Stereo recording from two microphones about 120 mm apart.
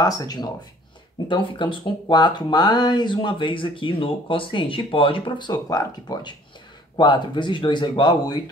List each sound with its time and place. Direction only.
0.0 s speech: 30° left (ahead or behind)
1.3 s speech: 45° left (ahead or behind)